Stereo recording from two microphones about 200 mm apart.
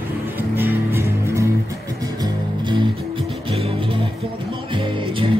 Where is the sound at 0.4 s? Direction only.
10° right (ahead or behind).